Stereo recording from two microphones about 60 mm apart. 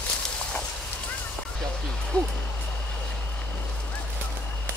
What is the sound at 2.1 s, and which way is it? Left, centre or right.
Owl, centre.